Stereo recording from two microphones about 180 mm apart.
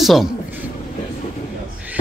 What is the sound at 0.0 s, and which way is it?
Speech, centre (ahead or behind).